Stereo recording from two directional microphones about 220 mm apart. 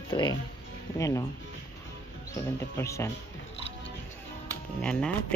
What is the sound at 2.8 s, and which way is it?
Speech, 15° left (ahead or behind).